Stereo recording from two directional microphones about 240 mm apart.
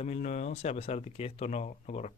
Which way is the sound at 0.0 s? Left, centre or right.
Left.